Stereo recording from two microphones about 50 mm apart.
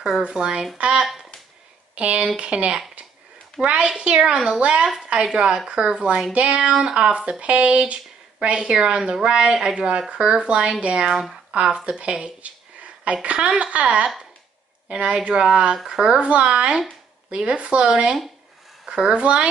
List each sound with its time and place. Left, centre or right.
0.3 s speech: centre
4.0 s speech: centre
19.1 s speech: right